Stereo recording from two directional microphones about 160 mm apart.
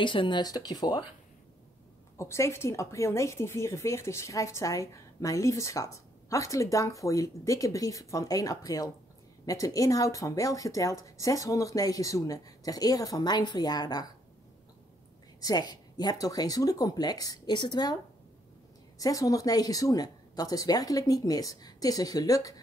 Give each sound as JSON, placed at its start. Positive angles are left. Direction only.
{"t": 0.0, "sound": "a woman's voice", "side_deg": 30}
{"t": 2.1, "sound": "a woman's voice", "side_deg": 20}
{"t": 15.4, "sound": "a woman's voice", "side_deg": 25}
{"t": 18.9, "sound": "a woman's voice", "side_deg": 20}